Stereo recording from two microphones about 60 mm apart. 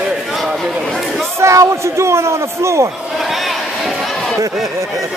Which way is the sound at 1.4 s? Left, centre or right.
Right.